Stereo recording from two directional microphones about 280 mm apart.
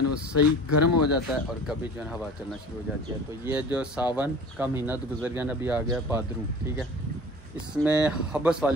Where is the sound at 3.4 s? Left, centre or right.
Centre.